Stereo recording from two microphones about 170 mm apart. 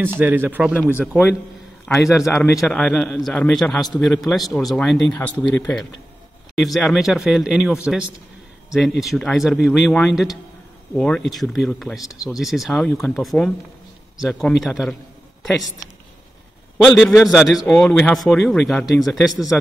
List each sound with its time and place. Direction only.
0.2 s speech: 10° right (ahead or behind)
2.2 s speech: 15° left (ahead or behind)
2.6 s speech: 5° left (ahead or behind)
16.7 s speech: centre (ahead or behind)